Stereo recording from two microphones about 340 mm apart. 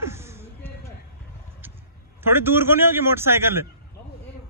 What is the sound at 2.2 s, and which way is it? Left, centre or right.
Speech, centre.